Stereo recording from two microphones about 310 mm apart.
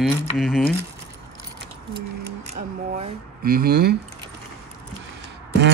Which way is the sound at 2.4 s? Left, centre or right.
Right.